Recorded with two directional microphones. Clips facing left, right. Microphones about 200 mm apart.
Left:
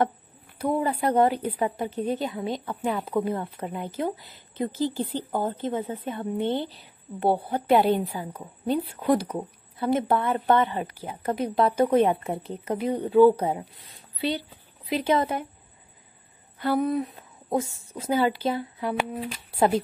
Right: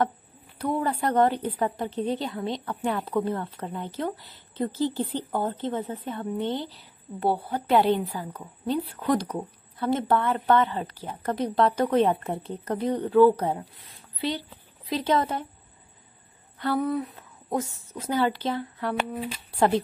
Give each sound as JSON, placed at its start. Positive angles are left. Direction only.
{"t": 0.6, "sound": "a woman's voice", "side_deg": 10}
{"t": 3.3, "sound": "a woman's voice", "side_deg": 15}
{"t": 15.0, "sound": "a woman's voice", "side_deg": 10}
{"t": 16.5, "sound": "a sound", "side_deg": 15}
{"t": 18.0, "sound": "a woman's voice", "side_deg": 10}